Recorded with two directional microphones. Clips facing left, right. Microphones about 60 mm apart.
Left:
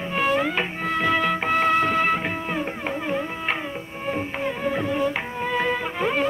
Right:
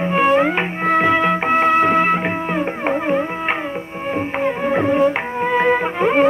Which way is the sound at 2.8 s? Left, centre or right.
Right.